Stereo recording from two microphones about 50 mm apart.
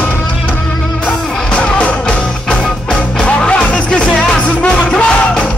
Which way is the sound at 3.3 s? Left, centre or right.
Left.